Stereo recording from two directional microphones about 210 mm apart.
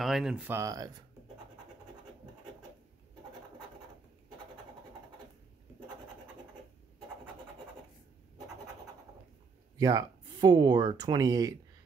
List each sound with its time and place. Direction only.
0.0 s speech: centre (ahead or behind)
9.8 s speech: 15° right (ahead or behind)